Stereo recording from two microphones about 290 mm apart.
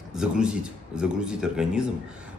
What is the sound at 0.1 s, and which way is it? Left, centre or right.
A man's voice, centre.